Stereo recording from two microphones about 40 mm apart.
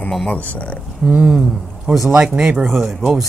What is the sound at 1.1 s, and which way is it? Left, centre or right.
Speech, right.